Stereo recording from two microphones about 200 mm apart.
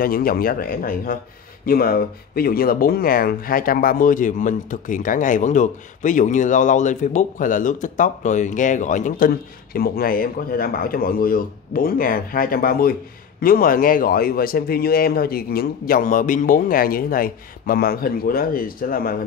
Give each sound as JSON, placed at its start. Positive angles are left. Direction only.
{"t": 0.0, "sound": "speech", "side_deg": 45}